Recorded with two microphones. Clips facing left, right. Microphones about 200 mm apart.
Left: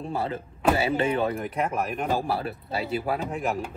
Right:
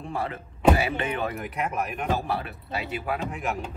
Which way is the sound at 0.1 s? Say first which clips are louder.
Left 1 dB; 30° left (ahead or behind).